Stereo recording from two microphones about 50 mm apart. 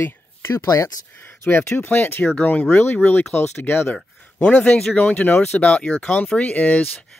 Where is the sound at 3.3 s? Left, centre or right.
Left.